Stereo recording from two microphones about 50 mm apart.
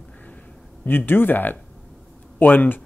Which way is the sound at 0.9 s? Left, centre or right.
Left.